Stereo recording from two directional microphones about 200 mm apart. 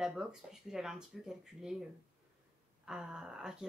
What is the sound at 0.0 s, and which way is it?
A woman's voice, centre (ahead or behind).